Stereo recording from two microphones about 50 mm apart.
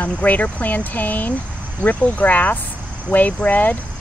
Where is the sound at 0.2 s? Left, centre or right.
Left.